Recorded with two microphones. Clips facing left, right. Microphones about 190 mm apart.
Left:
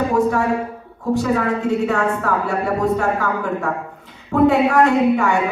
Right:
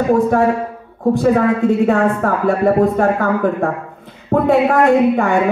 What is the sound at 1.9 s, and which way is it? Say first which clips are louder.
A woman's voice: right 5 dB; 50° right (ahead or behind).